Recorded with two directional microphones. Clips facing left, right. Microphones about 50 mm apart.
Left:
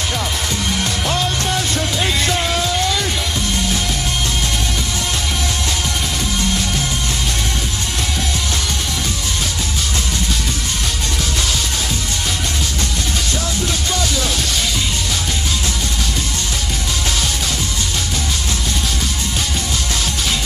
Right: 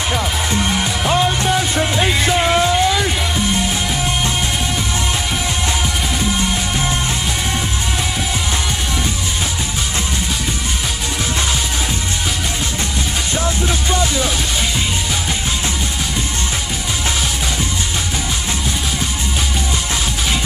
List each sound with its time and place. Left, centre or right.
0.1 s music: right
13.9 s music: right